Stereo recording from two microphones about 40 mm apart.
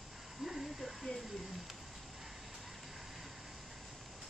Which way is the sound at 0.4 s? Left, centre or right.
Centre.